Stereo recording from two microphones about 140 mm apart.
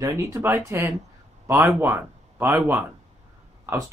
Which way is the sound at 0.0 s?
20° right (ahead or behind).